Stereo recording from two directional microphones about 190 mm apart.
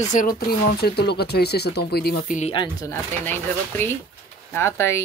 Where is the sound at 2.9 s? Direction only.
10° left (ahead or behind).